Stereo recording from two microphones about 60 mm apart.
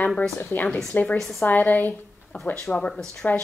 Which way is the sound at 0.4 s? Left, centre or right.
Left.